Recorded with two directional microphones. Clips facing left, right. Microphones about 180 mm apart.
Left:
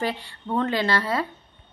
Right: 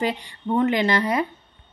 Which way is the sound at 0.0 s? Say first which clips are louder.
Right 3 dB; 15° right (ahead or behind).